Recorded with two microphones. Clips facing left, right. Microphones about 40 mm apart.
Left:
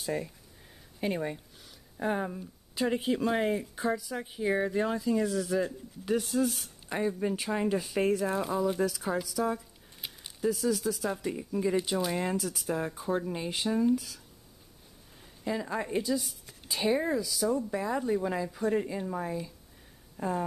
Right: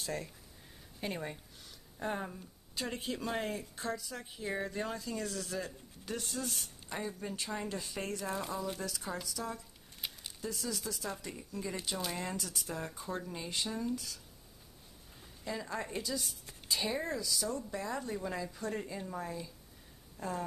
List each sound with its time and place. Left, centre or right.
0.0 s speech: centre
6.9 s speech: left
7.8 s speech: centre
13.3 s speech: left
15.4 s speech: centre